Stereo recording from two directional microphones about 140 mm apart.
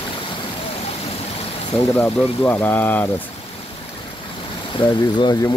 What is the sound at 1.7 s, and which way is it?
Speech, 15° left (ahead or behind).